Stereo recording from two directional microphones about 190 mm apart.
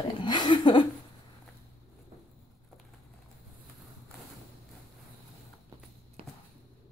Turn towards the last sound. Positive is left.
turn(degrees=-30)  # may be behind; listen again after turning